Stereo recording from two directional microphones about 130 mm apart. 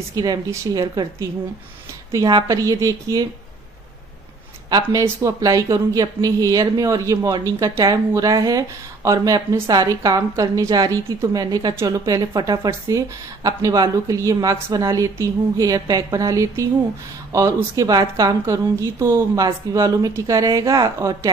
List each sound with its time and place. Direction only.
0.1 s speech: 30° right (ahead or behind)
4.6 s speech: 30° right (ahead or behind)